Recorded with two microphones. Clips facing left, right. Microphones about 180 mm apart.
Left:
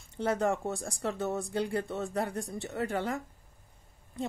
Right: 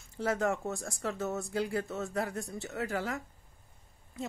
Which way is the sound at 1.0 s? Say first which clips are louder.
Left 2 dB; 30° left (ahead or behind).